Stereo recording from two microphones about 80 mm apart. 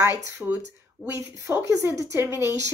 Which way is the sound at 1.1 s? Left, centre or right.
Right.